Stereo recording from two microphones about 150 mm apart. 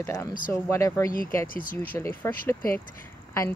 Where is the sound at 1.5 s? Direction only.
70° left (ahead or behind).